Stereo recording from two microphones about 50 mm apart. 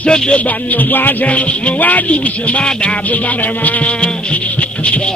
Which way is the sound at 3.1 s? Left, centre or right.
Left.